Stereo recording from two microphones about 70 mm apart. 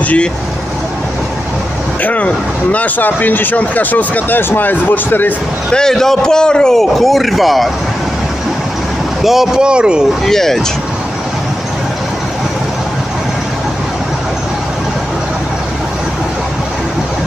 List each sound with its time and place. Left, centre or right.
2.0 s speech: left
5.7 s a man's voice: centre
9.2 s speech: centre
10.2 s a man's voice: centre